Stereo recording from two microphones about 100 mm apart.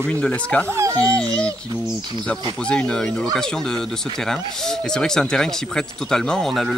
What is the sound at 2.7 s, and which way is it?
Speech, 10° left (ahead or behind).